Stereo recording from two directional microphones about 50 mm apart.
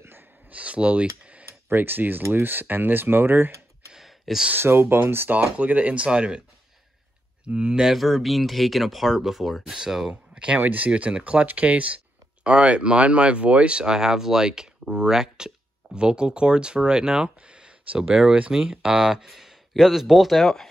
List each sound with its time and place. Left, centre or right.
0.0 s a sound: right
0.5 s speech: right
1.7 s speech: right
3.9 s sigh: centre
4.6 s speech: right
5.3 s speech: right
7.4 s speech: right
7.8 s speech: centre
10.3 s a sound: right
10.6 s speech: right
10.9 s speech: right
19.2 s a sound: centre
19.7 s speech: centre